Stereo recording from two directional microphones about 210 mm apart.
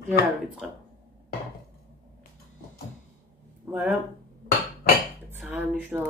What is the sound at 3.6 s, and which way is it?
Speech, 5° right (ahead or behind).